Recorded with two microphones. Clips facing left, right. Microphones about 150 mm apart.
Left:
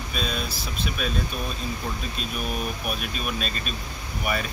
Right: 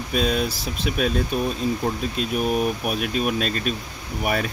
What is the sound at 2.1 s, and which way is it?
Speech, 75° right (ahead or behind).